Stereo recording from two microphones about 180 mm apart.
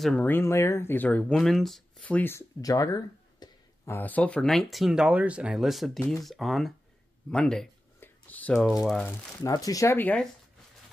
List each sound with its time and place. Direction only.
0.0 s speech: 5° left (ahead or behind)
9.4 s speech: 20° left (ahead or behind)